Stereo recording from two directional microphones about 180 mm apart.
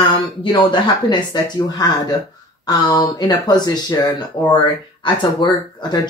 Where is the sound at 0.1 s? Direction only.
30° left (ahead or behind).